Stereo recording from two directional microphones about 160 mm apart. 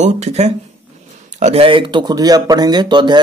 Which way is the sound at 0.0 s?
45° right (ahead or behind).